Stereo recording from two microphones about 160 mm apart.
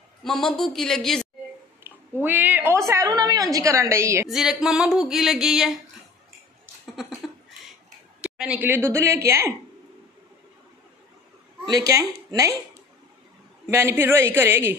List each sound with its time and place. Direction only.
0.2 s a sound: 5° left (ahead or behind)
2.2 s a woman's voice: 10° right (ahead or behind)
4.3 s a sound: centre (ahead or behind)
8.2 s a woman's voice: 5° right (ahead or behind)
11.6 s speech: 20° right (ahead or behind)
13.7 s a woman's voice: 15° right (ahead or behind)